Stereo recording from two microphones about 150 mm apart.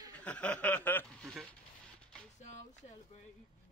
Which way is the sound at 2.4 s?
55° left (ahead or behind).